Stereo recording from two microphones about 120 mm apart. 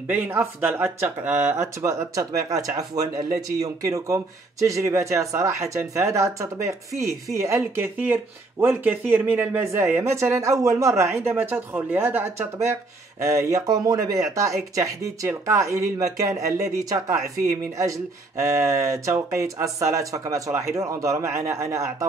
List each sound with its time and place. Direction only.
0.1 s speech: 15° right (ahead or behind)